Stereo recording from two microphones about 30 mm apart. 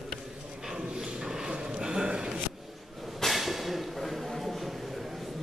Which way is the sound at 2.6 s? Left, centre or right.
Centre.